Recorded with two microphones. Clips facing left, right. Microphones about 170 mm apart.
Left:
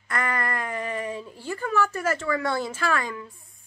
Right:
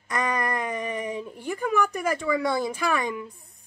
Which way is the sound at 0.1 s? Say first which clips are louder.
Right 2 dB; 20° right (ahead or behind).